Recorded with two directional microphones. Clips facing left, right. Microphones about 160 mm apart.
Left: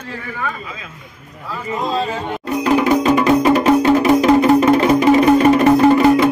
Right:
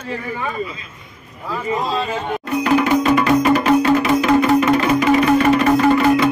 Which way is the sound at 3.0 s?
20° left (ahead or behind).